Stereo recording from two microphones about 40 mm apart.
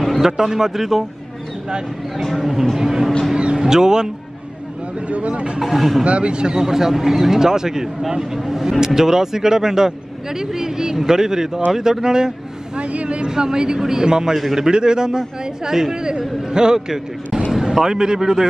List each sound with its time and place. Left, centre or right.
0.2 s speech: centre
2.3 s speech: centre
3.3 s vehicle: right
5.0 s speech: right
5.6 s speech: centre
6.0 s speech: right
12.8 s speech: right
13.3 s speech: centre
14.7 s a man's voice: right